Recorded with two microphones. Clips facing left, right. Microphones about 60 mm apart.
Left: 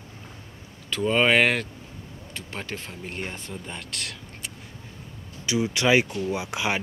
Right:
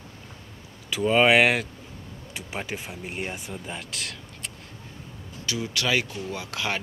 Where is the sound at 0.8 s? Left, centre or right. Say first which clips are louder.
Right 2 dB; centre.